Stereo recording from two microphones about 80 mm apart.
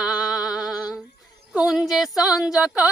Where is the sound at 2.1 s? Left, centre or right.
Left.